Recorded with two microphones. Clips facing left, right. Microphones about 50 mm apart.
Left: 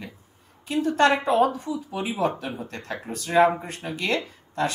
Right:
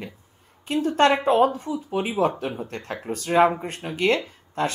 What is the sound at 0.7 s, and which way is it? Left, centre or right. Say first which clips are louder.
A woman's voice: right 1 dB; right.